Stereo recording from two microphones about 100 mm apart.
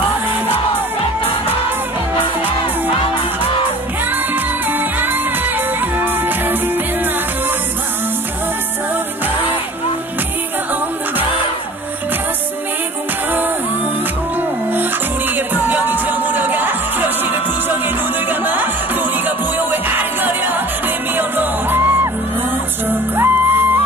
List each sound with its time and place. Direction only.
4.6 s music: 20° right (ahead or behind)
15.3 s music: 15° right (ahead or behind)